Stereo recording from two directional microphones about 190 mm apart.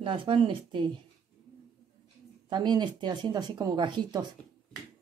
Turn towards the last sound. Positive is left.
turn(degrees=-25)  # may be behind; listen again after turning